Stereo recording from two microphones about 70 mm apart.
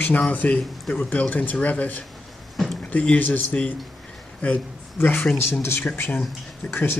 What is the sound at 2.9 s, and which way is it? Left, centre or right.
Speech, left.